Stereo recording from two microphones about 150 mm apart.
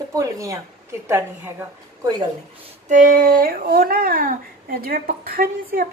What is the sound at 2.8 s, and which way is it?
Speech, 60° right (ahead or behind).